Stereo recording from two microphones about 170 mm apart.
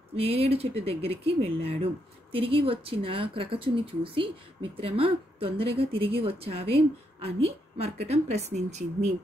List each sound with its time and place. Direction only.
0.1 s speech: 35° right (ahead or behind)